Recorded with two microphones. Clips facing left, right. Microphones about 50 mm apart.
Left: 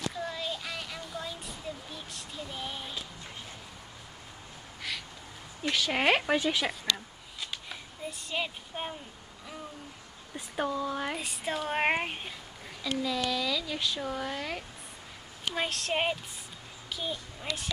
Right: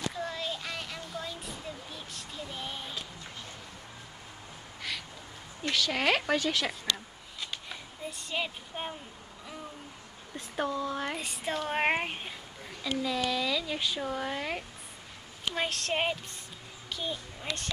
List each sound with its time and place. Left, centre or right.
0.1 s a sound: centre
4.8 s crow: centre
5.6 s speech: centre
7.3 s a sound: centre
10.3 s speech: centre
15.5 s speech: centre